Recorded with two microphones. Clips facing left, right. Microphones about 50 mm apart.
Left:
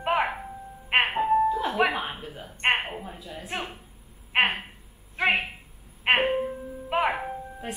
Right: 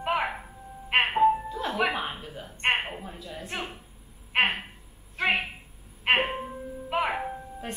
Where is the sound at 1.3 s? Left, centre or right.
Centre.